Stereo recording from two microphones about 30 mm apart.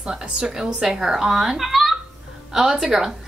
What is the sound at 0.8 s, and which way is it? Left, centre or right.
Speech, centre.